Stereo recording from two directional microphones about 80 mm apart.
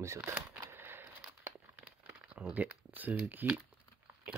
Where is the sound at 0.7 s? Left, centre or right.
Right.